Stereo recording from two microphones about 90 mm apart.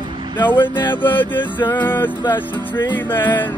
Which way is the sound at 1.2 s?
20° left (ahead or behind).